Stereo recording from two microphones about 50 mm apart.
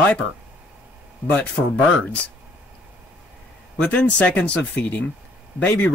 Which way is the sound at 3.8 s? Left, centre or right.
Left.